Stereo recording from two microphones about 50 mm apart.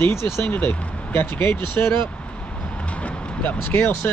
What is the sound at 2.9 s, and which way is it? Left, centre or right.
Vehicle, left.